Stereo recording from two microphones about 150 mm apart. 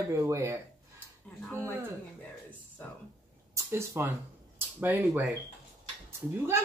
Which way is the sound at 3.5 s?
15° right (ahead or behind).